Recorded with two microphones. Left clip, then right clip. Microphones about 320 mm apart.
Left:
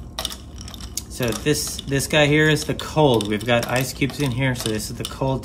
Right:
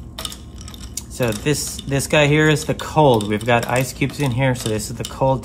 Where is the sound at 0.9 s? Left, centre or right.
Centre.